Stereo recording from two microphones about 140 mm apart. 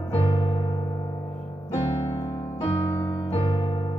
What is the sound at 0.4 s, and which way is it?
Music, 30° left (ahead or behind).